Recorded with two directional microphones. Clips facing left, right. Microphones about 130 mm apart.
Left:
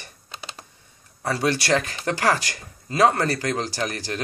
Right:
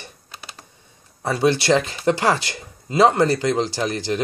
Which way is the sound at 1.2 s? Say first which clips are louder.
Right 4 dB; 20° right (ahead or behind).